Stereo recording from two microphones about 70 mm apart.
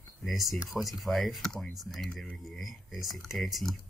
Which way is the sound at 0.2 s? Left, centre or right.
Centre.